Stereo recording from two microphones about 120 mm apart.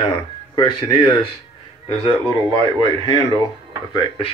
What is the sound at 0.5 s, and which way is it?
Speech, 35° left (ahead or behind).